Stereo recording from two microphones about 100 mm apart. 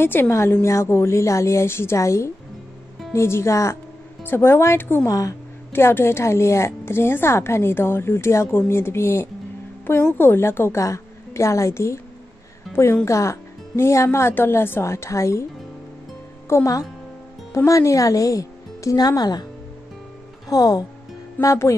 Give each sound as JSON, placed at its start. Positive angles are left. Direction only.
{"t": 0.0, "sound": "a woman's voice", "side_deg": 25}
{"t": 13.0, "sound": "a woman's voice", "side_deg": 30}
{"t": 16.4, "sound": "speech", "side_deg": 30}
{"t": 20.4, "sound": "speech", "side_deg": 40}